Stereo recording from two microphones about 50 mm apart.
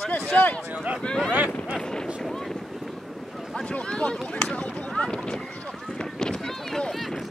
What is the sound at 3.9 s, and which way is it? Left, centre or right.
Speech, centre.